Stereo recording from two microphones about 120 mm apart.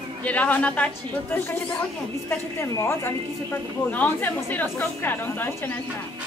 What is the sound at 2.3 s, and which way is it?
A woman's voice, 20° left (ahead or behind).